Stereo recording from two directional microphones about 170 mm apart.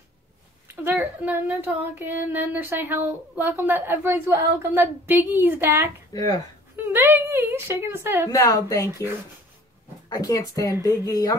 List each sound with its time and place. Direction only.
0.8 s a woman's voice: 10° right (ahead or behind)
6.9 s a woman's voice: 10° right (ahead or behind)
8.3 s speech: 20° left (ahead or behind)
10.0 s speech: 25° left (ahead or behind)